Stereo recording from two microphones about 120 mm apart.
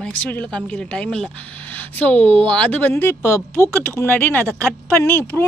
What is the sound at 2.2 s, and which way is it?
Speech, 45° right (ahead or behind).